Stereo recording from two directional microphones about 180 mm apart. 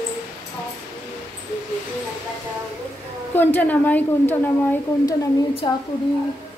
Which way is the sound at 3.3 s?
10° left (ahead or behind).